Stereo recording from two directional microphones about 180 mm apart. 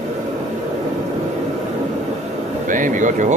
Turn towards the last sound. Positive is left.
turn(degrees=-45)  # may be behind; listen again after turning